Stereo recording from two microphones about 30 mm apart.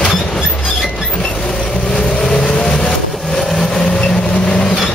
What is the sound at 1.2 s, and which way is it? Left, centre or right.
Vehicle, left.